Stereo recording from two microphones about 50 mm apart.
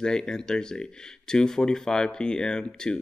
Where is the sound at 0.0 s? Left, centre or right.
Centre.